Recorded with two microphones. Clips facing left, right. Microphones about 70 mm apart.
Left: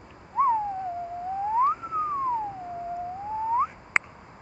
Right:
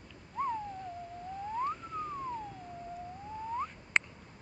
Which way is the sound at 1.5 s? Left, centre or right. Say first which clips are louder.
Left 12 dB; left.